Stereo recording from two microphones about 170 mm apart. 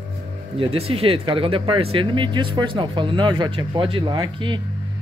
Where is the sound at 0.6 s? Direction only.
35° right (ahead or behind).